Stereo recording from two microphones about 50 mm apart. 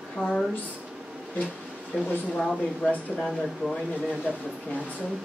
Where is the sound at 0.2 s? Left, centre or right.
Left.